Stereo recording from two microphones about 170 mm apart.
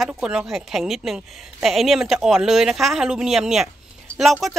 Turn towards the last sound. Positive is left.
turn(degrees=0)  # may be behind; listen again after turning